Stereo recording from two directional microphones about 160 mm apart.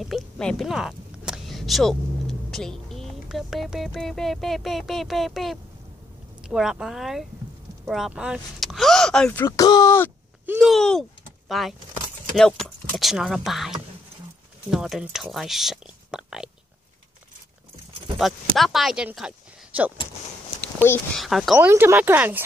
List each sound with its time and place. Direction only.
0.0 s speech: centre (ahead or behind)
9.5 s speech: 20° left (ahead or behind)
10.6 s speech: centre (ahead or behind)
18.2 s speech: centre (ahead or behind)
19.1 s a sound: 5° right (ahead or behind)
20.6 s a sound: 15° left (ahead or behind)
21.2 s speech: centre (ahead or behind)
21.6 s speech: 15° right (ahead or behind)